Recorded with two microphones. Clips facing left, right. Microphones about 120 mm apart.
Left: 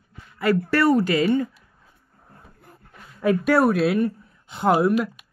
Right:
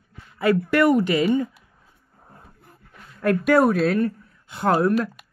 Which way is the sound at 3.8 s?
15° left (ahead or behind).